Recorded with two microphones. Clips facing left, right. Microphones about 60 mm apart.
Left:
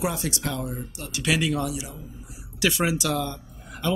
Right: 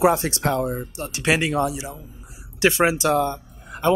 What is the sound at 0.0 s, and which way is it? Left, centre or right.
Speech, right.